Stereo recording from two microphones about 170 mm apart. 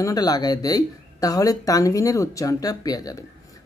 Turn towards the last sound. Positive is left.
turn(degrees=20)  # may be behind; listen again after turning